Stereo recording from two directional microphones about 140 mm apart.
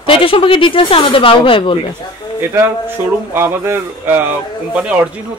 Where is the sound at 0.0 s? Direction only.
40° left (ahead or behind).